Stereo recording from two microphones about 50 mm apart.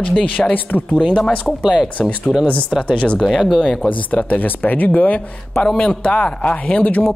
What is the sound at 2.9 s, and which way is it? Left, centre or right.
Speech, left.